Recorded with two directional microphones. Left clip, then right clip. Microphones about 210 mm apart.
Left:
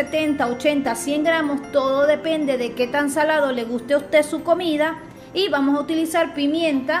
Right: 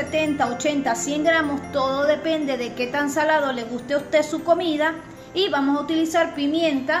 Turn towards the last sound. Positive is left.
turn(degrees=15)  # may be behind; listen again after turning